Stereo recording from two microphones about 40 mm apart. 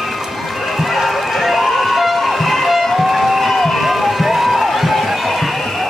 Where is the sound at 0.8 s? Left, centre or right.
Centre.